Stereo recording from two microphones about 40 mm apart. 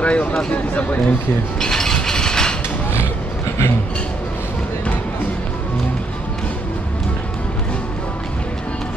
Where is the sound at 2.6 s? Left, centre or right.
Left.